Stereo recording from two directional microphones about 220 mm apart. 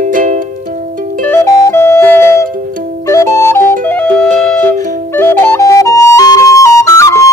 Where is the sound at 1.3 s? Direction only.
10° left (ahead or behind).